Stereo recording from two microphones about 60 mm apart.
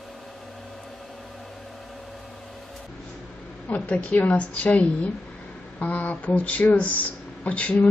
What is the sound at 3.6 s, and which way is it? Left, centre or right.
A woman's voice, left.